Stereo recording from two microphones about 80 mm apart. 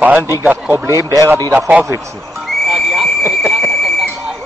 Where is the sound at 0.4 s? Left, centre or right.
Right.